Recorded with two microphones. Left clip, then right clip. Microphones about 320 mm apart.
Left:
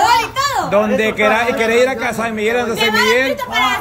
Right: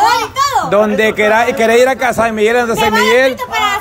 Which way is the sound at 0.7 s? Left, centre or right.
Centre.